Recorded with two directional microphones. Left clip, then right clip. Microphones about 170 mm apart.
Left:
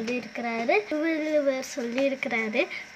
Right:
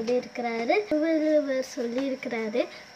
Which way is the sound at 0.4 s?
45° left (ahead or behind).